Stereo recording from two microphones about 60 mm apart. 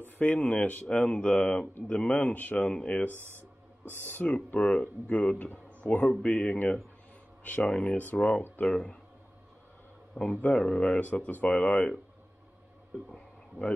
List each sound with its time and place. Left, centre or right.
0.0 s a sound: left
0.4 s speech: left
4.1 s speech: left; by 8.9 s centre
10.1 s a man's voice: centre
11.1 s speech: left
13.1 s a sound: left